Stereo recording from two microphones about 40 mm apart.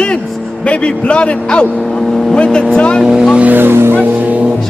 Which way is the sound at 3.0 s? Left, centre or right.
Centre.